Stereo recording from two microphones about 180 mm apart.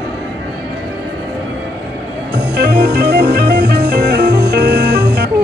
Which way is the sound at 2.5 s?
65° right (ahead or behind).